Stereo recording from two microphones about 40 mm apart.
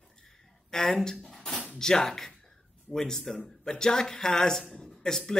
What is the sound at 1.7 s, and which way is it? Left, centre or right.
Speech, centre.